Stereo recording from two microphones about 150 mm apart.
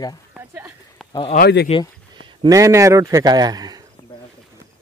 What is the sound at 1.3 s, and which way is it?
Speech, 90° left.